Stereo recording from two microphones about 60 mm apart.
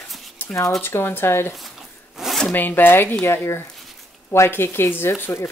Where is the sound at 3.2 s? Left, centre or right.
Left.